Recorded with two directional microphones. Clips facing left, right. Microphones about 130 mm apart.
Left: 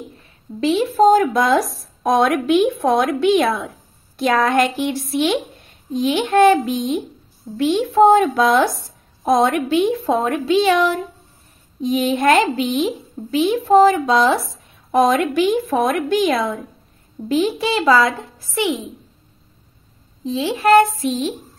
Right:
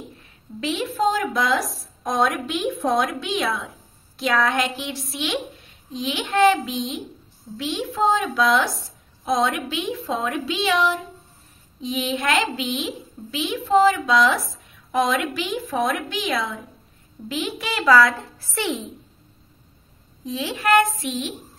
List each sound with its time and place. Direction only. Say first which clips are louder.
0.6 s a woman's voice: left 9 dB; 35° left (ahead or behind)
17.3 s a woman's voice: left 9 dB; 35° left (ahead or behind); by 18.9 s 15° left (ahead or behind)
20.2 s speech: left 6 dB; 30° left (ahead or behind)